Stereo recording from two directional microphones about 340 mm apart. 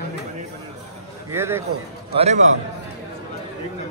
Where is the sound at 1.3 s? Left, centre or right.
Centre.